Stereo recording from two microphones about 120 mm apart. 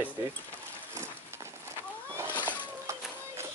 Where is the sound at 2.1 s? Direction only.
20° right (ahead or behind).